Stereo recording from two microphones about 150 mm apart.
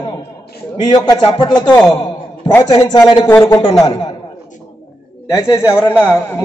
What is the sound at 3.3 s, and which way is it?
Speech, 15° left (ahead or behind).